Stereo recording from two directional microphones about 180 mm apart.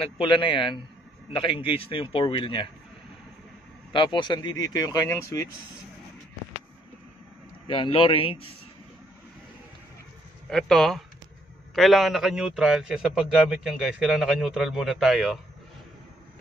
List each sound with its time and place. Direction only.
0.2 s speech: 30° left (ahead or behind)
3.9 s speech: 25° left (ahead or behind)
7.6 s a man's voice: 30° left (ahead or behind)
10.5 s a man's voice: centre (ahead or behind)